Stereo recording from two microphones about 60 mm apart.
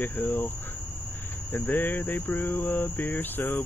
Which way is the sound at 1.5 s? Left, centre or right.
Left.